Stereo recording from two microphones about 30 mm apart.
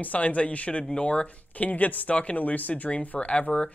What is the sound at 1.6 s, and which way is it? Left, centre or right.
Speech, left.